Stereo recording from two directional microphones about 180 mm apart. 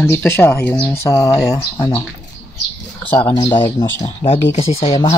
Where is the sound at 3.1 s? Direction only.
10° left (ahead or behind).